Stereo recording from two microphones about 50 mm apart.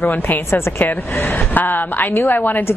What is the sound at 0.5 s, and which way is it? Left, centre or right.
Speech, left.